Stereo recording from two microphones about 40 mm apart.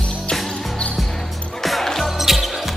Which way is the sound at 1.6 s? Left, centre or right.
Centre.